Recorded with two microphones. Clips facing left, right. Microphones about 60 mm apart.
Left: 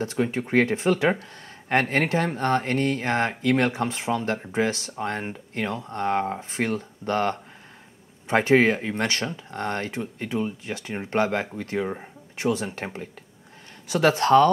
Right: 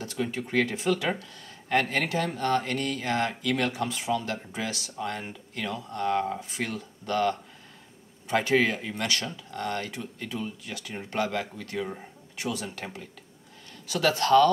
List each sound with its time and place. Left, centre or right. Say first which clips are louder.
0.0 s speech: left 6 dB; left